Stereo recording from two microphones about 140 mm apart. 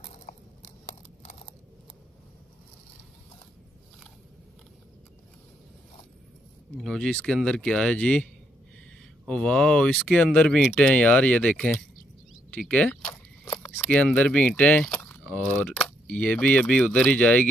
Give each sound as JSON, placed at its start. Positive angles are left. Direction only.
{"t": 0.3, "sound": "a sound", "side_deg": 75}
{"t": 6.8, "sound": "speech", "side_deg": 5}
{"t": 9.3, "sound": "speech", "side_deg": 5}